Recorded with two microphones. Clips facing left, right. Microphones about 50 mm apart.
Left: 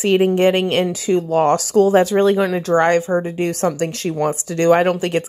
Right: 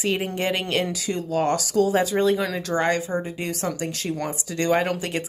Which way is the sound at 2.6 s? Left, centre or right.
Left.